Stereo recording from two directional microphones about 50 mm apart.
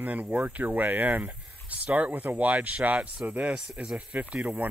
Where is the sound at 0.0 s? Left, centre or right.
Right.